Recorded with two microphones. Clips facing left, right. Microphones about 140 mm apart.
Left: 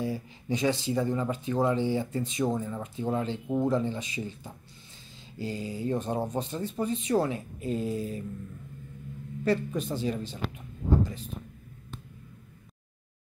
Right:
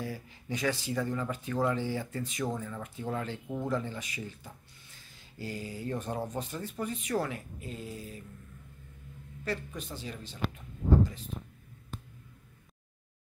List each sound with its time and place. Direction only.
0.0 s speech: 20° left (ahead or behind)
9.8 s speech: 25° left (ahead or behind)